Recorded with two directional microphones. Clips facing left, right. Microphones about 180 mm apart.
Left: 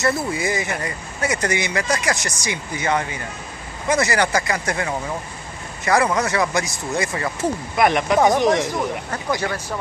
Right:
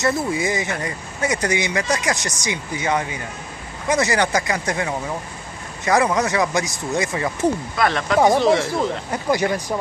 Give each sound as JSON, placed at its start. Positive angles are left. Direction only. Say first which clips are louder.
{"t": 0.0, "sound": "speech", "louder": "right 1 dB", "side_deg": -15}
{"t": 7.7, "sound": "speech", "louder": "left 2 dB", "side_deg": 15}
{"t": 9.1, "sound": "speech", "louder": "right 4 dB", "side_deg": -15}